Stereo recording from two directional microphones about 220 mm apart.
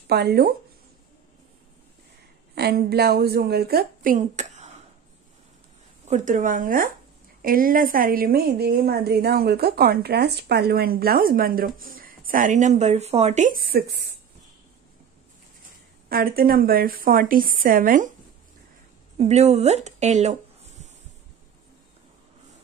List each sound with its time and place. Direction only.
0.1 s a woman's voice: 45° right (ahead or behind)
2.5 s a woman's voice: 45° right (ahead or behind)
6.0 s a woman's voice: 35° right (ahead or behind)
16.1 s a woman's voice: 40° right (ahead or behind)
19.1 s a woman's voice: 30° right (ahead or behind)